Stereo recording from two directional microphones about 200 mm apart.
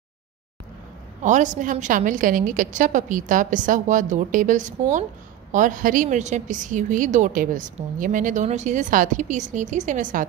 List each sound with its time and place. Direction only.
1.2 s a woman's voice: 40° right (ahead or behind)